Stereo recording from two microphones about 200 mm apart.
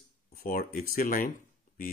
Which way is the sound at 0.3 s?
45° left (ahead or behind).